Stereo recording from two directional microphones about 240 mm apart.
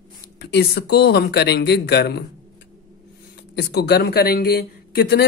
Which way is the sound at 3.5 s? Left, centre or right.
Left.